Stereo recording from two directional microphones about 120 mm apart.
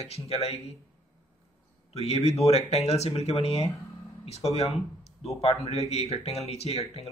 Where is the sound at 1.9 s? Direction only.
65° left (ahead or behind).